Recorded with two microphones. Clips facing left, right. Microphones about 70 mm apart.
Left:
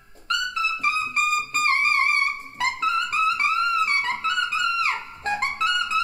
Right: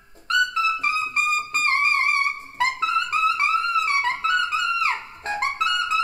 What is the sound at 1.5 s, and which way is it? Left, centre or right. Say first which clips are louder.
Music: even; right.